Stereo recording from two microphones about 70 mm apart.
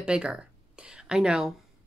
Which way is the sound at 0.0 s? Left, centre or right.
Centre.